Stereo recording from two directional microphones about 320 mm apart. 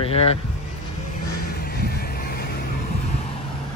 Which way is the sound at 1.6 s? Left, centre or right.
Left.